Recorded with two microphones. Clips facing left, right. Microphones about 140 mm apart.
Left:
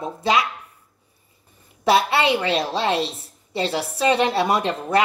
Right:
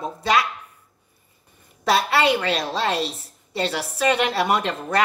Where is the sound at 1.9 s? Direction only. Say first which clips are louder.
Even; 25° left (ahead or behind).